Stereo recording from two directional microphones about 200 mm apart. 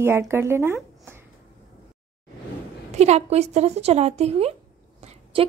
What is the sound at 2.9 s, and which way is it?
A woman's voice, 35° right (ahead or behind).